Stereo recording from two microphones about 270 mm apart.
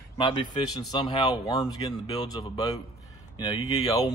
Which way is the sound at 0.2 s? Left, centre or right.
Centre.